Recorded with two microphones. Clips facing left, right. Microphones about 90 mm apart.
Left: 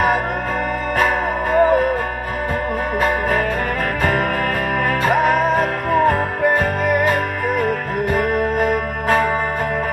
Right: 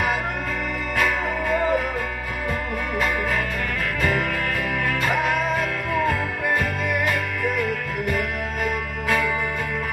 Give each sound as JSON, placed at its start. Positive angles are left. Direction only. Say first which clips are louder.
{"t": 0.9, "sound": "music", "louder": "left 4 dB", "side_deg": 45}
{"t": 3.0, "sound": "music", "louder": "left 5 dB", "side_deg": 45}
{"t": 5.0, "sound": "music", "louder": "left 8 dB", "side_deg": 50}